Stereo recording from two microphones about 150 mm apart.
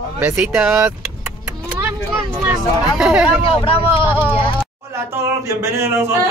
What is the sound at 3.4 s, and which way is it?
Speech, 40° left (ahead or behind).